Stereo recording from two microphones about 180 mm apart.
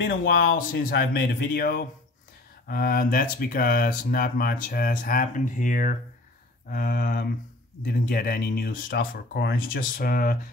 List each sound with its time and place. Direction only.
0.0 s speech: 60° left (ahead or behind)